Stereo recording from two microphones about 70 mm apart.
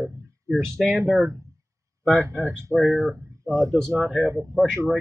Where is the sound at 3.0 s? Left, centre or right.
Right.